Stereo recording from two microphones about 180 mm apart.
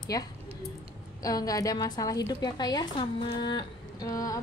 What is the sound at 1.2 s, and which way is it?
A woman's voice, 20° left (ahead or behind).